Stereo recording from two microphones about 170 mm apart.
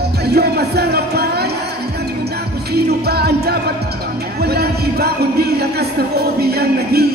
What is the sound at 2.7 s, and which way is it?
Music, 70° right (ahead or behind).